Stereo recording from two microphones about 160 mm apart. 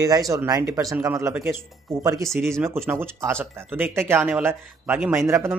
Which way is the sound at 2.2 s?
Centre (ahead or behind).